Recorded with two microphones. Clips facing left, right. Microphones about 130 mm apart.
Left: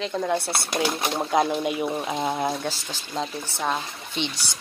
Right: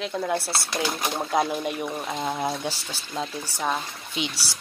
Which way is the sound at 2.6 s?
10° right (ahead or behind).